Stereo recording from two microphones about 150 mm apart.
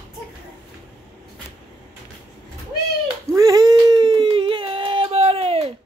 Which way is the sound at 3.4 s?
25° right (ahead or behind).